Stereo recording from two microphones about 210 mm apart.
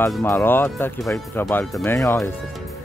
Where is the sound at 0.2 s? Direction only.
10° left (ahead or behind).